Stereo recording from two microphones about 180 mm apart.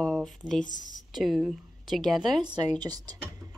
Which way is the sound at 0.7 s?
45° left (ahead or behind).